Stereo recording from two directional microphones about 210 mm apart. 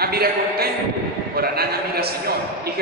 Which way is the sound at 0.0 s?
45° right (ahead or behind).